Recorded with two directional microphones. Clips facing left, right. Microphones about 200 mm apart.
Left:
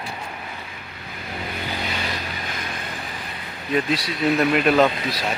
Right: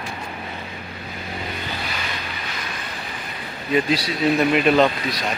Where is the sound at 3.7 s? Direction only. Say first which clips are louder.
Right 2 dB; centre (ahead or behind).